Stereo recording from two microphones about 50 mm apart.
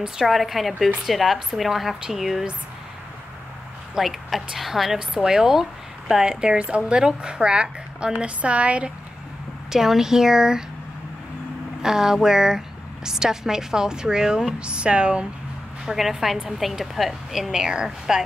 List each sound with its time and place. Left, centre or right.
0.3 s a woman's voice: centre
3.9 s a woman's voice: centre
4.9 s a woman's voice: centre
8.4 s speech: right
9.7 s a woman's voice: centre
11.8 s a woman's voice: centre
15.8 s a woman's voice: centre